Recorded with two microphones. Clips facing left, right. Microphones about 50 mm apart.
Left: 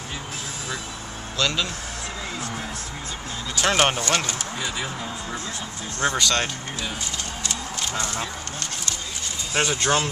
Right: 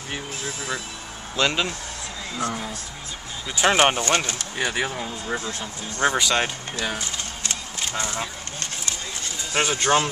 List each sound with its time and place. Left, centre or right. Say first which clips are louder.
1.3 s speech: right 2 dB; right
3.5 s speech: right 2 dB; centre
4.6 s speech: right 8 dB; right
5.9 s speech: right 2 dB; centre
9.5 s speech: right 2 dB; right